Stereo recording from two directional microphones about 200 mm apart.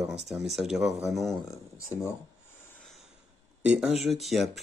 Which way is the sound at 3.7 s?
5° right (ahead or behind).